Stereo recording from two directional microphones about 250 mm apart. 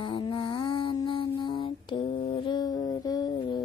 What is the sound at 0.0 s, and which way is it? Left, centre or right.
Mantra, centre.